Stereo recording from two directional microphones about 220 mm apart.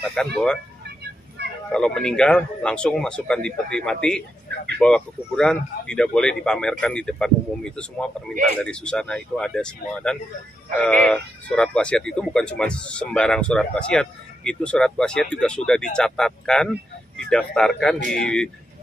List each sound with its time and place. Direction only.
0.0 s speech: centre (ahead or behind)
1.7 s speech: 5° left (ahead or behind)
17.9 s speech: 50° left (ahead or behind)
18.2 s speech: 5° left (ahead or behind)